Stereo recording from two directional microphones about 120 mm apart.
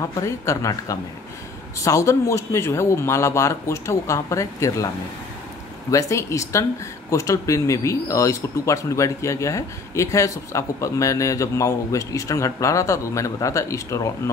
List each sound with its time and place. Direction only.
0.1 s speech: 25° left (ahead or behind)
5.9 s speech: 25° left (ahead or behind)